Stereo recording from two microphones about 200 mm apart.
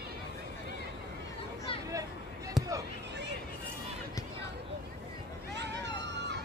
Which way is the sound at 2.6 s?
Centre (ahead or behind).